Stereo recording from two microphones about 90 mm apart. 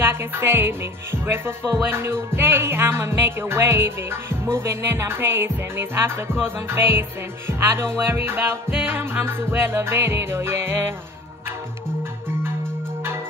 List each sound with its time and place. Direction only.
0.0 s music: 25° right (ahead or behind)